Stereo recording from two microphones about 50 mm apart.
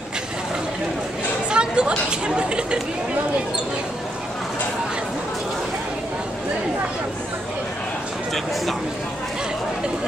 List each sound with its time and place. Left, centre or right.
1.5 s speech: centre